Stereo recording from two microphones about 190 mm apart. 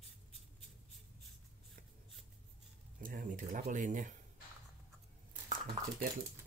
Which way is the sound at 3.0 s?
45° right (ahead or behind).